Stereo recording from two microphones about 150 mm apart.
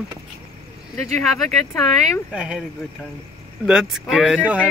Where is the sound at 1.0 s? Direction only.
50° right (ahead or behind).